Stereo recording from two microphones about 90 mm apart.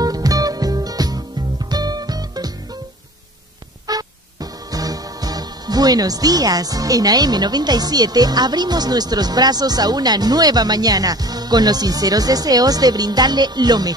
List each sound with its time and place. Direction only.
0.0 s music: 45° right (ahead or behind)
3.8 s music: 45° right (ahead or behind)